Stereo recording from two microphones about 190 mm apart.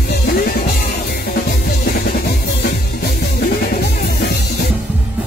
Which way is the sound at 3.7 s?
55° left (ahead or behind).